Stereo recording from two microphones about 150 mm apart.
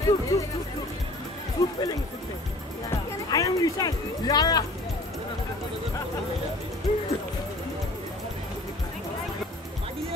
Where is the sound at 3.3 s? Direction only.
25° left (ahead or behind).